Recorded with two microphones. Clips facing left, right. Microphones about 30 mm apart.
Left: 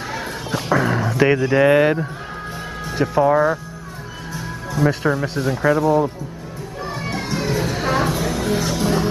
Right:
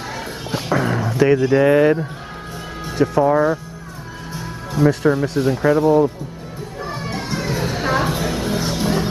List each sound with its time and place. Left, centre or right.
0.7 s a sound: centre
1.5 s speech: centre
2.9 s speech: centre
5.1 s speech: centre
5.8 s speech: centre
6.9 s music: centre
7.4 s a sound: centre
8.2 s music: centre